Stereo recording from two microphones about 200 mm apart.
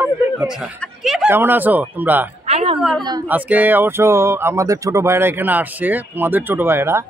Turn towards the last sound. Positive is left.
turn(degrees=-10)  # may be behind; listen again after turning